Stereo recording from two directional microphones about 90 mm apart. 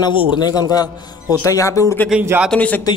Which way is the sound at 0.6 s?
45° left (ahead or behind).